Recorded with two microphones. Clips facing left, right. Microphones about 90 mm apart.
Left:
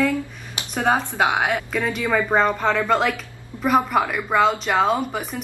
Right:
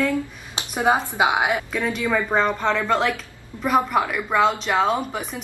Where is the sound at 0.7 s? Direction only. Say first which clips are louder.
Even; 15° right (ahead or behind).